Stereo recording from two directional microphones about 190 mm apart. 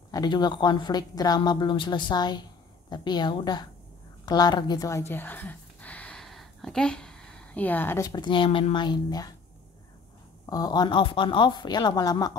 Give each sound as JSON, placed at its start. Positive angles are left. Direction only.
{"t": 0.1, "sound": "speech", "side_deg": 20}
{"t": 10.4, "sound": "speech", "side_deg": 20}